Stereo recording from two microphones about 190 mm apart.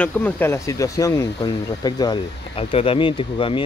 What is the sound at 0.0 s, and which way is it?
Speech, 10° left (ahead or behind).